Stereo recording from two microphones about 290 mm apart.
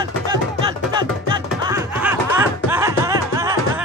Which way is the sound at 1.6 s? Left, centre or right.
Centre.